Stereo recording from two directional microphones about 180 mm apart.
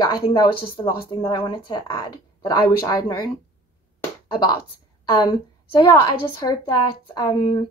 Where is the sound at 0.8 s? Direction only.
30° left (ahead or behind).